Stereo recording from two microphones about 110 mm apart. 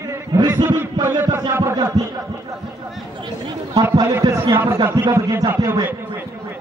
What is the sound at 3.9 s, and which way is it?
Speech, 35° right (ahead or behind).